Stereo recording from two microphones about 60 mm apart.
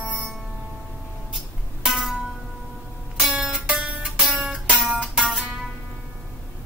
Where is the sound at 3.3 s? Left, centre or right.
Centre.